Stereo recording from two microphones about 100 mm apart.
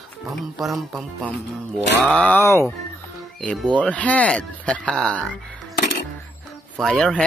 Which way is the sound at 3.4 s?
10° left (ahead or behind).